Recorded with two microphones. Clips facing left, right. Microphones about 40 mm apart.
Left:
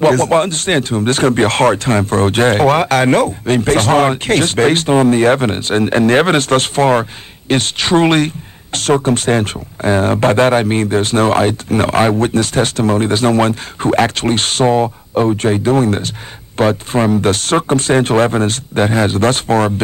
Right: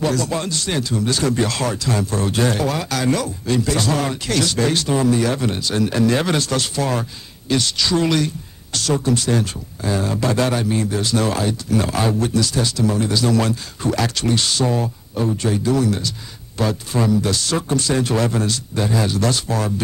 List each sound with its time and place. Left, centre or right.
0.0 s speech: left